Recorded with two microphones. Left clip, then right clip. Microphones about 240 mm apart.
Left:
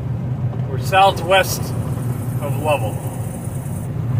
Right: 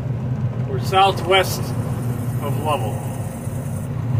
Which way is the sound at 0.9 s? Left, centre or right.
Left.